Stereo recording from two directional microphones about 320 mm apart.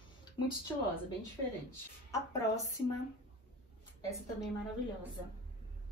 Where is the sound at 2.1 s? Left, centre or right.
Centre.